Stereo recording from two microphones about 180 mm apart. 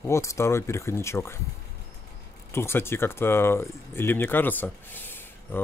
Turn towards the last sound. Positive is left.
turn(degrees=10)  # may be behind; listen again after turning